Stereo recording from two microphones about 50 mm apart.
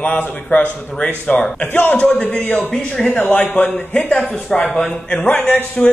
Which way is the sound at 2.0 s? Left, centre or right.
Left.